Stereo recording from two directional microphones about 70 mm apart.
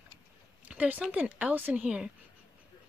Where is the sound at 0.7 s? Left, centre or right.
Right.